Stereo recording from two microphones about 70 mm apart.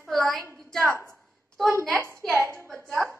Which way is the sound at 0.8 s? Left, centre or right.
Right.